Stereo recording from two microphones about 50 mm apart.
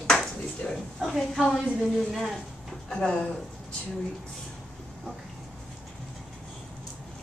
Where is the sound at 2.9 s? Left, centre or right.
Left.